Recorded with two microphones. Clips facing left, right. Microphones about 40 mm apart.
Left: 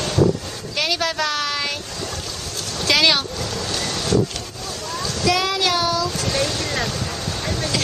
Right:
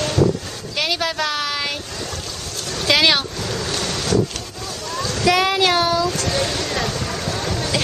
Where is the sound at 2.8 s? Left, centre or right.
Centre.